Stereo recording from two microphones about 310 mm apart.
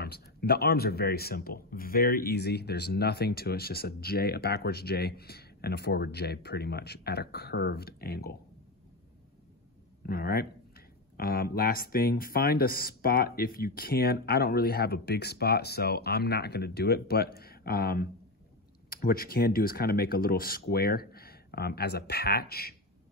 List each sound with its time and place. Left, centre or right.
0.0 s speech: left
10.0 s speech: left